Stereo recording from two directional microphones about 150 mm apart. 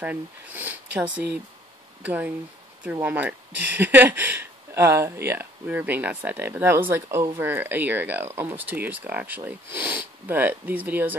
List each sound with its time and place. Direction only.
0.0 s speech: 10° right (ahead or behind)
2.0 s speech: 10° right (ahead or behind)